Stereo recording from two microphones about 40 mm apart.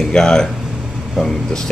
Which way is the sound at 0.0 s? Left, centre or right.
Centre.